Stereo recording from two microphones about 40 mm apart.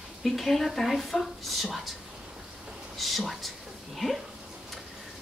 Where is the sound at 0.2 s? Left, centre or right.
Centre.